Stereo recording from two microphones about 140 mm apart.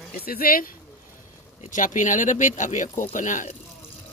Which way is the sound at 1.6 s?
70° left (ahead or behind).